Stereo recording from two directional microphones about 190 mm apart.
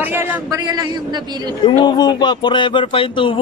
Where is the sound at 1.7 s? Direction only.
25° left (ahead or behind).